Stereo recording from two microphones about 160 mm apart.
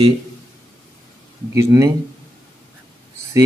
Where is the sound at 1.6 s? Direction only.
20° right (ahead or behind).